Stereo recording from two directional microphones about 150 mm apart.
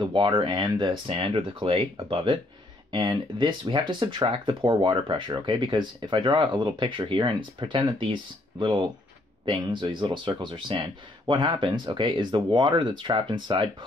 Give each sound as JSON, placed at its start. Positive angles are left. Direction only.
{"t": 0.0, "sound": "speech", "side_deg": -35}